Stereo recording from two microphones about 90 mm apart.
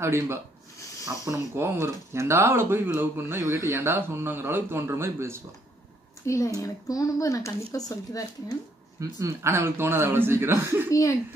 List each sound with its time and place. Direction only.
0.0 s speech: 30° right (ahead or behind)
1.0 s speech: 40° right (ahead or behind)
1.5 s speech: 30° right (ahead or behind)
6.2 s speech: 35° left (ahead or behind)
9.0 s a man's voice: 35° right (ahead or behind)
9.5 s speech: 25° right (ahead or behind)
10.9 s speech: 35° left (ahead or behind)